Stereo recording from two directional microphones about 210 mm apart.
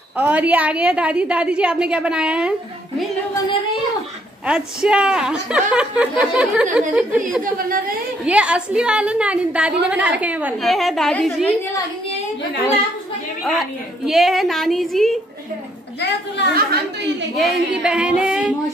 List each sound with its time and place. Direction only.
0.2 s a woman's voice: 5° right (ahead or behind)
4.5 s a woman's voice: 5° right (ahead or behind)
7.5 s a woman's voice: 45° right (ahead or behind)
8.3 s a woman's voice: 5° right (ahead or behind)
13.4 s a woman's voice: centre (ahead or behind)
16.0 s a woman's voice: 55° left (ahead or behind)
17.4 s a woman's voice: 5° right (ahead or behind)